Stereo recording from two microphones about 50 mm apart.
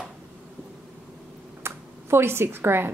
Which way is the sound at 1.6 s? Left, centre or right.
Right.